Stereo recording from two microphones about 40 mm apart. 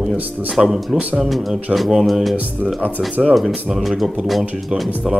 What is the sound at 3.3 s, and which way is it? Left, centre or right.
Speech, centre.